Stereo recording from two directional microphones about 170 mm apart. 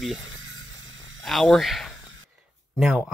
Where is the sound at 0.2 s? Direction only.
90° right.